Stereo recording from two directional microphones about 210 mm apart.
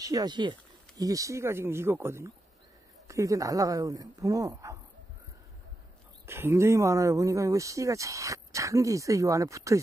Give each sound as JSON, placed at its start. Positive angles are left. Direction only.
{"t": 0.0, "sound": "speech", "side_deg": -15}
{"t": 6.2, "sound": "speech", "side_deg": -10}